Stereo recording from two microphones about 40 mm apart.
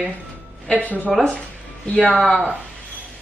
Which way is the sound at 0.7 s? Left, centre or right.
Left.